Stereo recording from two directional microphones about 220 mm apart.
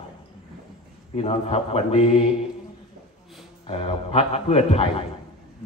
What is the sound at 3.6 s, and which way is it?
A man's voice, 25° left (ahead or behind).